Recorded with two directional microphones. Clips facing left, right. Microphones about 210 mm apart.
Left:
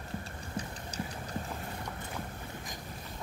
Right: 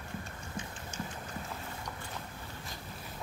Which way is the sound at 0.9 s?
40° left (ahead or behind).